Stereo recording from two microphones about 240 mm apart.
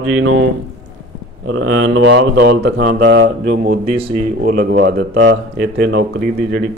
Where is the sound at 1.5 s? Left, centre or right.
Right.